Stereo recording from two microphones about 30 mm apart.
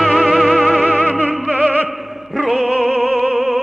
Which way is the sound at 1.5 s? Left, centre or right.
Right.